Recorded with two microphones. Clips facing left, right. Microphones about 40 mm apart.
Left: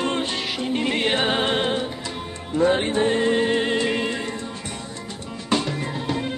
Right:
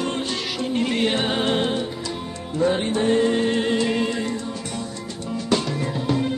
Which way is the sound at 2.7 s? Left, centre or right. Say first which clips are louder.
Left 2 dB; left.